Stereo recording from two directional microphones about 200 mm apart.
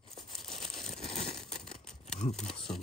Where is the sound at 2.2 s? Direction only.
35° left (ahead or behind).